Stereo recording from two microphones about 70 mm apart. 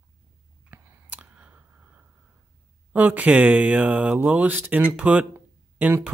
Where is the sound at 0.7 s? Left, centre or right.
Right.